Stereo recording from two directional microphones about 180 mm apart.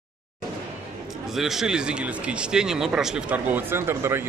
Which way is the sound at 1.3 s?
Centre (ahead or behind).